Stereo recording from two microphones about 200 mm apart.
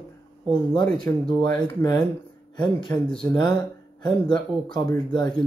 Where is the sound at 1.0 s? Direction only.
20° left (ahead or behind).